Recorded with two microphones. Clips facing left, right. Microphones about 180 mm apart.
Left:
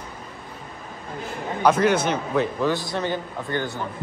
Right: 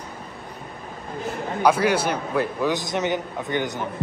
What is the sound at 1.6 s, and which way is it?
A man's voice, 10° right (ahead or behind).